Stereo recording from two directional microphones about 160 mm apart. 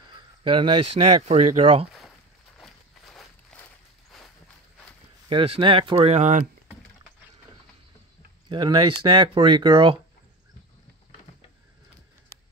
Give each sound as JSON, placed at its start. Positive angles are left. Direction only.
{"t": 0.4, "sound": "speech", "side_deg": -35}
{"t": 1.2, "sound": "speech", "side_deg": -45}
{"t": 2.0, "sound": "walk", "side_deg": 0}
{"t": 5.3, "sound": "speech", "side_deg": -35}
{"t": 8.5, "sound": "speech", "side_deg": -30}